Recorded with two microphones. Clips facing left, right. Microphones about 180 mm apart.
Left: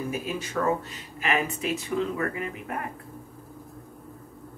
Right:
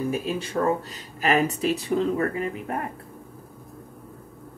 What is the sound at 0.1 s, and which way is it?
Speech, 30° right (ahead or behind).